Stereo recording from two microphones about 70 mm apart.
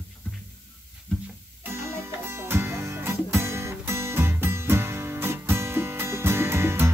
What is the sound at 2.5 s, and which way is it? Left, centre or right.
Music, right.